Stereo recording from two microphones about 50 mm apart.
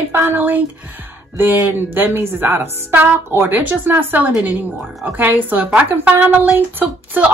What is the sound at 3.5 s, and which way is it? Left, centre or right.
A woman's voice, right.